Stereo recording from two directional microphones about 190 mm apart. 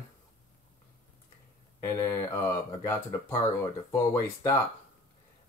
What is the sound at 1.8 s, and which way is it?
Speech, 15° left (ahead or behind).